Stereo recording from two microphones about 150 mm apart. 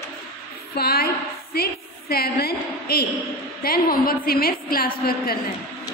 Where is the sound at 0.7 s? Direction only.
90° left.